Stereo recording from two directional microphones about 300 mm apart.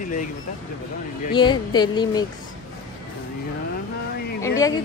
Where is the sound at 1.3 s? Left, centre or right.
Centre.